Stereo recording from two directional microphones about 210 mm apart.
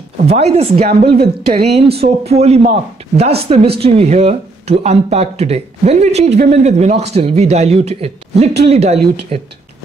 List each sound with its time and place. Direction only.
0.3 s speech: 30° right (ahead or behind)
1.0 s speech: 50° right (ahead or behind)
1.6 s speech: 30° right (ahead or behind)